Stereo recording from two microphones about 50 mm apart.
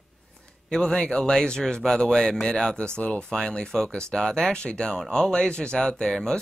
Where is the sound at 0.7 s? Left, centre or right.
Centre.